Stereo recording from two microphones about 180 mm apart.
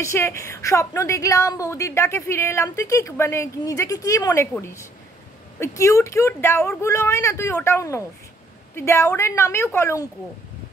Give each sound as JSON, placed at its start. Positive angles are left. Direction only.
{"t": 0.0, "sound": "a woman's voice", "side_deg": 15}